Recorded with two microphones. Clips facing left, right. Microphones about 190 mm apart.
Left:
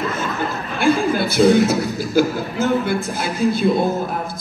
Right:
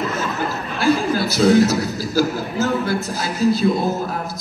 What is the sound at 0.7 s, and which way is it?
Speech, 55° left (ahead or behind).